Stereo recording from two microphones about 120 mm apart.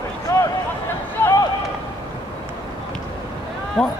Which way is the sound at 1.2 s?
15° left (ahead or behind).